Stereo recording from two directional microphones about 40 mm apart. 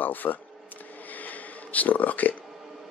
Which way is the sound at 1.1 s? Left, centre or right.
Left.